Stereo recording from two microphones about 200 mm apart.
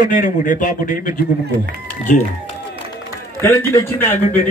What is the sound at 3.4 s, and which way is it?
Speech, 15° left (ahead or behind).